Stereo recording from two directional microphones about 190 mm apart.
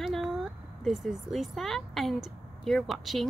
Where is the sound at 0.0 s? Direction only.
Centre (ahead or behind).